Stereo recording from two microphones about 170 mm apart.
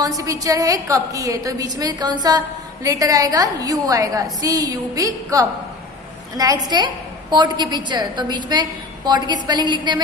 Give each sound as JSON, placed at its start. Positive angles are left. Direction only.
{"t": 0.0, "sound": "a woman's voice", "side_deg": -20}